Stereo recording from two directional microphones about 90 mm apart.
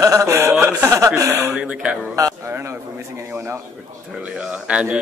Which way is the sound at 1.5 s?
10° right (ahead or behind).